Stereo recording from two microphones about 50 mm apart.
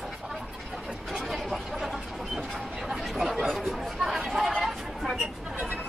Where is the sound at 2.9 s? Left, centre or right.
Centre.